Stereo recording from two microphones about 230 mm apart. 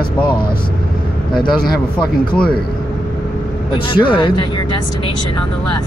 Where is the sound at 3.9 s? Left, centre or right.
Left.